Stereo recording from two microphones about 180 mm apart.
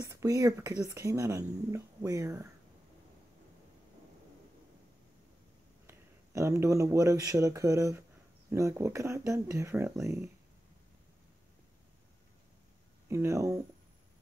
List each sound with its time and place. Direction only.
0.0 s speech: 20° right (ahead or behind)
5.9 s speech: 15° right (ahead or behind)
13.1 s speech: 15° right (ahead or behind)